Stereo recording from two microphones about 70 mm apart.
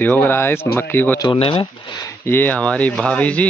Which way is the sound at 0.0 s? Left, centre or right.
Left.